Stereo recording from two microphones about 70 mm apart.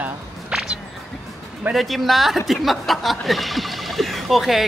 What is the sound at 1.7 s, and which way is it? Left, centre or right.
Speech, centre.